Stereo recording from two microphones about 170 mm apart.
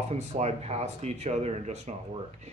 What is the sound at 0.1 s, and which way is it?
Speech, 40° right (ahead or behind).